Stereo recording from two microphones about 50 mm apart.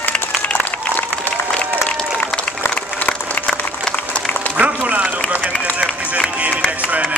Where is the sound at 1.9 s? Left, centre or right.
Centre.